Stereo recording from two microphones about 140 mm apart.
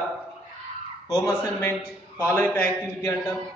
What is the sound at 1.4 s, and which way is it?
A man's voice, 20° left (ahead or behind).